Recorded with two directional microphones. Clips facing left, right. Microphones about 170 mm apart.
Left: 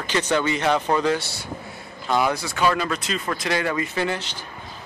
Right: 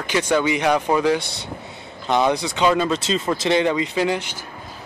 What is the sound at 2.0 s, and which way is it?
Speech, 20° right (ahead or behind).